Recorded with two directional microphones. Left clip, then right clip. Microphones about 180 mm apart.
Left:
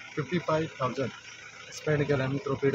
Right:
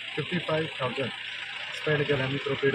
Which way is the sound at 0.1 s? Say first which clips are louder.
Even; 15° left (ahead or behind).